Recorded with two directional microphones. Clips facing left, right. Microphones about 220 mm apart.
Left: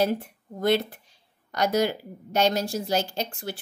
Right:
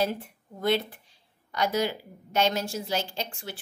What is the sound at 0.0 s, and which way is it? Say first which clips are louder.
A woman's voice: left 4 dB; 45° left (ahead or behind).